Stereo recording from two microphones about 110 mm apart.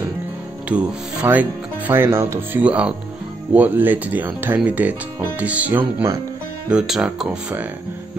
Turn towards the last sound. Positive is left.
turn(degrees=-5)  # may be behind; listen again after turning